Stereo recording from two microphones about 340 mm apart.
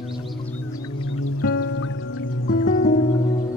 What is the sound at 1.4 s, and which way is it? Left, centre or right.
Music, left.